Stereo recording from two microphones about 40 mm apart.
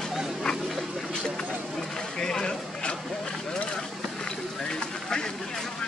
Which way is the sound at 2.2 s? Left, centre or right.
Centre.